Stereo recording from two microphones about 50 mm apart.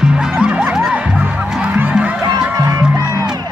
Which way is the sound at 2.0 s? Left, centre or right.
Right.